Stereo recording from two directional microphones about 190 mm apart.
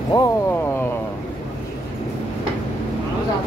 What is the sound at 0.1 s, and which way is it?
Speech, 25° left (ahead or behind).